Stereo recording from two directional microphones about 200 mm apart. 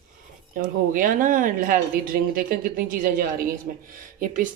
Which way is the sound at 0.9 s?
40° right (ahead or behind).